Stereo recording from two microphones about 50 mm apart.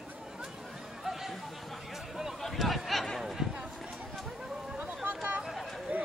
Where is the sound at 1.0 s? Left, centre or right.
Centre.